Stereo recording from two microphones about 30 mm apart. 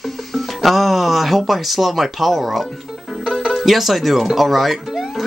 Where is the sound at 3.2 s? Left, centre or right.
Centre.